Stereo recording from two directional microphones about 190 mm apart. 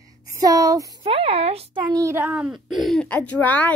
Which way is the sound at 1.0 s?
30° right (ahead or behind).